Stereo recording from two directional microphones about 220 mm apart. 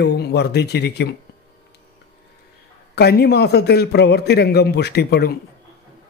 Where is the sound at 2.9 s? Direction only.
45° left (ahead or behind).